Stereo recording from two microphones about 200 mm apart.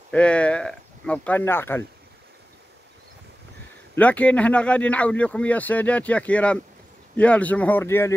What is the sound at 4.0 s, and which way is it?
A man's voice, 5° left (ahead or behind).